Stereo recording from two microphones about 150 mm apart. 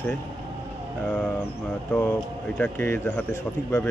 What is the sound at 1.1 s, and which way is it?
Speech, 10° left (ahead or behind).